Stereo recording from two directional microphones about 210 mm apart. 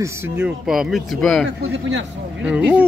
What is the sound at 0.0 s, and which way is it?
Speech, 5° right (ahead or behind).